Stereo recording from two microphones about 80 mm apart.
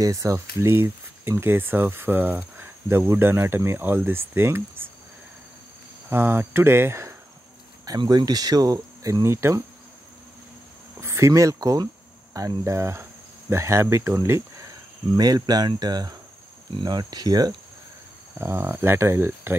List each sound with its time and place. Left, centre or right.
0.0 s speech: right
6.0 s speech: right
8.0 s speech: right
11.0 s speech: right
15.1 s speech: right
18.4 s speech: right